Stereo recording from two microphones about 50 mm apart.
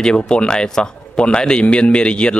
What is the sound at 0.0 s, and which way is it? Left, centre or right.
A man's voice, centre.